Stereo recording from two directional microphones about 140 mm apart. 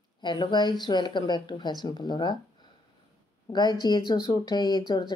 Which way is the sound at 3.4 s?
30° left (ahead or behind).